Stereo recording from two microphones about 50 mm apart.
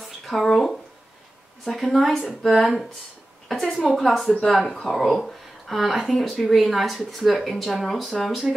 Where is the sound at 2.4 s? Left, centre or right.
Centre.